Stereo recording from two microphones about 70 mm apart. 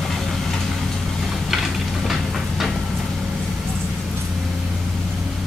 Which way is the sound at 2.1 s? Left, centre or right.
Centre.